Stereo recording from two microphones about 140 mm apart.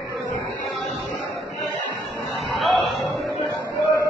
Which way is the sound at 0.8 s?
Centre (ahead or behind).